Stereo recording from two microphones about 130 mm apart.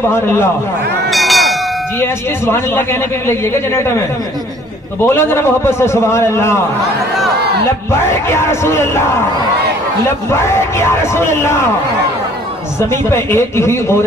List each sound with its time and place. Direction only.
0.1 s a man's voice: 20° left (ahead or behind)
1.1 s a sound: centre (ahead or behind)
2.0 s a man's voice: 20° left (ahead or behind)
5.0 s a man's voice: 20° left (ahead or behind)
7.9 s a man's voice: 20° left (ahead or behind)
10.3 s a man's voice: 20° left (ahead or behind)
12.9 s a man's voice: 20° left (ahead or behind)